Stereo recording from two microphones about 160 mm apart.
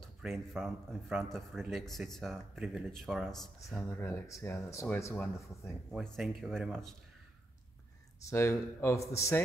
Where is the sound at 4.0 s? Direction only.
15° left (ahead or behind); by 6.7 s centre (ahead or behind).